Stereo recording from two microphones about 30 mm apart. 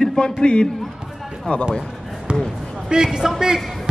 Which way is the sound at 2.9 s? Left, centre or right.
Right.